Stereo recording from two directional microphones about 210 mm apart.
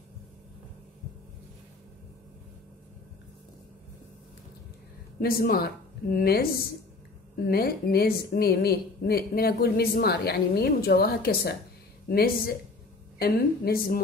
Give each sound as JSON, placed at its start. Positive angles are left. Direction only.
{"t": 5.2, "sound": "a woman's voice", "side_deg": 45}